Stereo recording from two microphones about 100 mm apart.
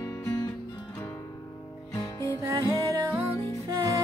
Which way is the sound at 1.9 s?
30° left (ahead or behind).